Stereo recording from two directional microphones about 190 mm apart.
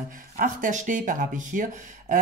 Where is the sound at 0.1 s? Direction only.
45° right (ahead or behind).